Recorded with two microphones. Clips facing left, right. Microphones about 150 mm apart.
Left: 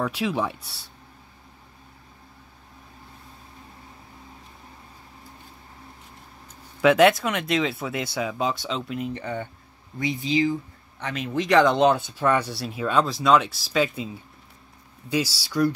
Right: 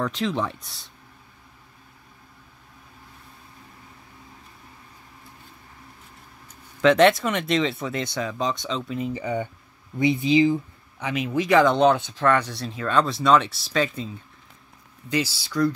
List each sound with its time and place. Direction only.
0.0 s speech: 10° left (ahead or behind)
6.8 s speech: 5° left (ahead or behind); by 9.5 s 10° right (ahead or behind)
9.9 s speech: 25° right (ahead or behind)
11.0 s speech: 10° right (ahead or behind); by 15.7 s 10° left (ahead or behind)